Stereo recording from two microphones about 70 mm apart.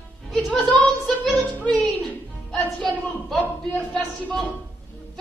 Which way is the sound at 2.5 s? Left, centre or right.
Centre.